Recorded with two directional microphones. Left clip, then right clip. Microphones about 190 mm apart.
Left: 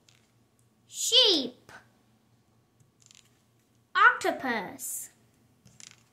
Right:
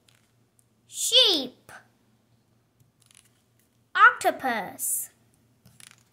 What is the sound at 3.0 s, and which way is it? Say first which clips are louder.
Scissors: left 2 dB; 20° right (ahead or behind).